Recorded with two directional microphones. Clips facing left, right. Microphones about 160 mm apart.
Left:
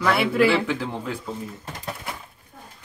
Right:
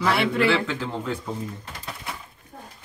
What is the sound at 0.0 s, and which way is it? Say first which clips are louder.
Speech: left 2 dB; centre (ahead or behind).